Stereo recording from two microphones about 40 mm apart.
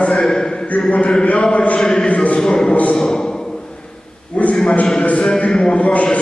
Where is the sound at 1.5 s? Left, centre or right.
Left.